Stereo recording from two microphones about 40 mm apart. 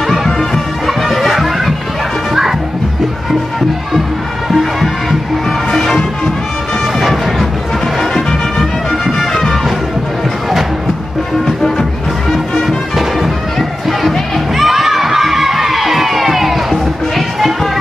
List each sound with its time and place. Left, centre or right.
0.0 s music: centre
4.5 s music: centre
5.7 s music: centre
9.0 s music: centre
12.3 s music: centre